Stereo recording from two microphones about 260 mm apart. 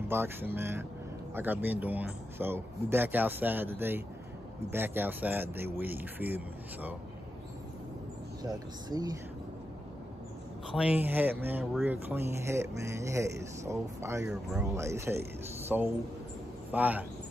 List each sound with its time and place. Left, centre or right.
0.1 s speech: centre
8.4 s speech: centre
10.7 s a man's voice: centre